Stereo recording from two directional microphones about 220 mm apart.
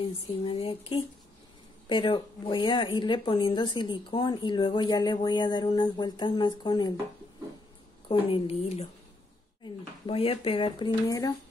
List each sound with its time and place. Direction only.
0.4 s speech: 25° left (ahead or behind)
8.1 s speech: 25° left (ahead or behind)
10.0 s speech: 25° left (ahead or behind)